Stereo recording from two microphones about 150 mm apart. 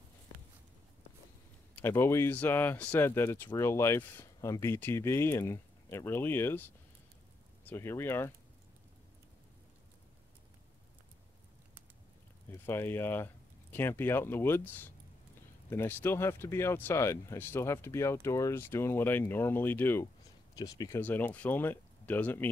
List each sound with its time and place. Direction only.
1.8 s speech: 15° left (ahead or behind)
7.6 s speech: 15° left (ahead or behind)
12.6 s speech: 15° left (ahead or behind)
21.0 s speech: 10° left (ahead or behind)